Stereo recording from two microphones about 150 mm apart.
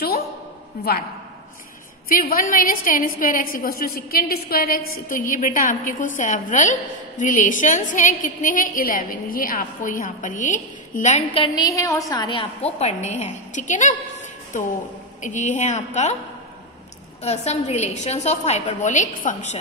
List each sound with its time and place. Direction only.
2.0 s a woman's voice: 70° left (ahead or behind); by 11.2 s 50° left (ahead or behind)
11.3 s a woman's voice: 30° left (ahead or behind)
12.7 s a woman's voice: 50° left (ahead or behind)
17.2 s a woman's voice: 45° left (ahead or behind)